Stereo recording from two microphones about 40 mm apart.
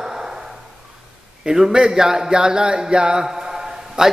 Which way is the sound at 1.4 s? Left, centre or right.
Centre.